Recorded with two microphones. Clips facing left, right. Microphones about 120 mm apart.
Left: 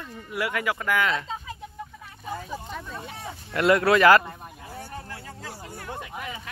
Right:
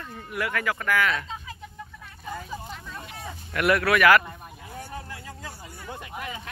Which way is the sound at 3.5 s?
25° left (ahead or behind).